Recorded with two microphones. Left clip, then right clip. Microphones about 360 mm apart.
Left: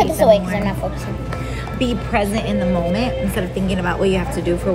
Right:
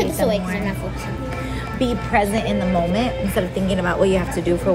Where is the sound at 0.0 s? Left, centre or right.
Centre.